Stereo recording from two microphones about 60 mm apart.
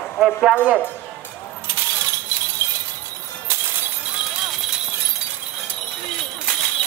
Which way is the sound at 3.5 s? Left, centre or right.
Right.